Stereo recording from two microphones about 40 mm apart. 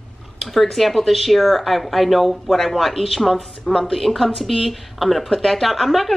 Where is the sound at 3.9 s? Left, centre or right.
Centre.